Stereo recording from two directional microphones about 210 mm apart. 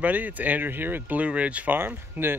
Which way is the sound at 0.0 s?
10° right (ahead or behind).